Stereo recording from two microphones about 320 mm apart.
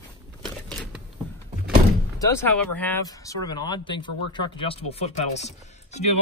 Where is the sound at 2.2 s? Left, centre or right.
Centre.